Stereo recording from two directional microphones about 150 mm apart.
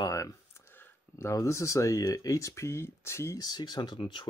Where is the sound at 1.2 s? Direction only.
20° left (ahead or behind).